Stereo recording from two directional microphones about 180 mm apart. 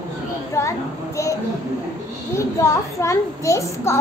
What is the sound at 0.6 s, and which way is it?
A child's voice, 15° left (ahead or behind).